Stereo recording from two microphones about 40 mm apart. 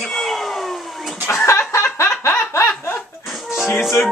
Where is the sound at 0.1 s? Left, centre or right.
Centre.